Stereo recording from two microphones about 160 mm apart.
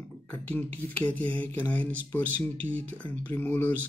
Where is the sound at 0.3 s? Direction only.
10° left (ahead or behind).